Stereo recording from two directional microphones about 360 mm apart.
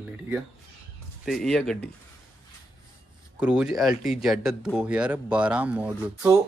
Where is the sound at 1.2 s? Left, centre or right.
Centre.